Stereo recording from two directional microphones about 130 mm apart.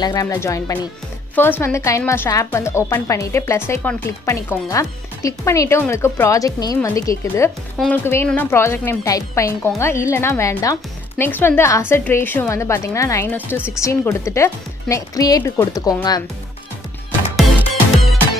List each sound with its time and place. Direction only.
0.0 s a woman's voice: 30° left (ahead or behind)